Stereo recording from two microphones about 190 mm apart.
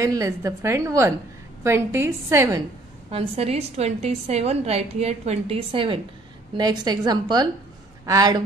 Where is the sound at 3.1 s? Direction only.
30° right (ahead or behind).